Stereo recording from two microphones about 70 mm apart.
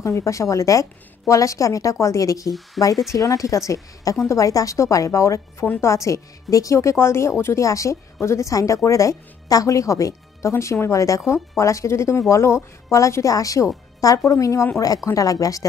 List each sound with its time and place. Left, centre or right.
0.0 s speech: left
15.1 s speech: left